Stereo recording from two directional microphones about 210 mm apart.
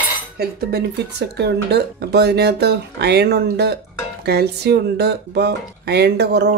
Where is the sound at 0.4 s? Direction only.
50° right (ahead or behind).